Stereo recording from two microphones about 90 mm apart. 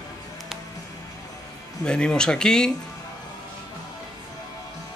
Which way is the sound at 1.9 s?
10° left (ahead or behind).